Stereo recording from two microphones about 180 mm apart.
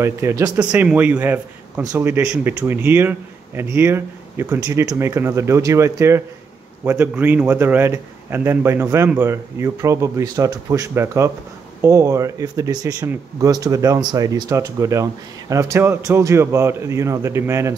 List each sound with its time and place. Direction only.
0.0 s a man's voice: 15° right (ahead or behind)